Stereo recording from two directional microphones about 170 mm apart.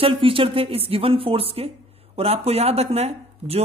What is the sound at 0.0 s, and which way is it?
Speech, 30° right (ahead or behind).